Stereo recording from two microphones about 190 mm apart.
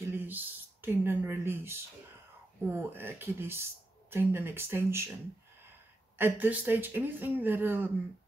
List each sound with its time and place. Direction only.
0.0 s a sound: 10° right (ahead or behind)
0.8 s a man's voice: 10° right (ahead or behind)
6.1 s a man's voice: 10° right (ahead or behind)